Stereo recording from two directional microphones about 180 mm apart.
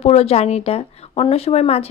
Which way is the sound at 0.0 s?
35° left (ahead or behind).